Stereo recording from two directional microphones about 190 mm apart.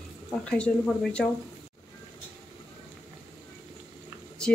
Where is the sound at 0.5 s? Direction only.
5° left (ahead or behind).